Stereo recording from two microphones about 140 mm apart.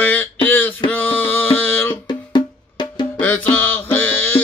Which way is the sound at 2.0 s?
30° left (ahead or behind).